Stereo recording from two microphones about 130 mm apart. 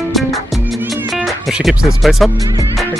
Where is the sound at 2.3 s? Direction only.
30° right (ahead or behind).